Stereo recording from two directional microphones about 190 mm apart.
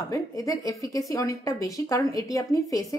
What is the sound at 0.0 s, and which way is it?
A woman's voice, 15° left (ahead or behind).